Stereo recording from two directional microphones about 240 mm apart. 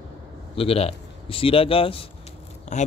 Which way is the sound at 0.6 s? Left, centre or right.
Left.